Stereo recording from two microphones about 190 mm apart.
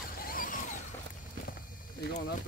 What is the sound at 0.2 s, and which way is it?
Vehicle, 50° left (ahead or behind).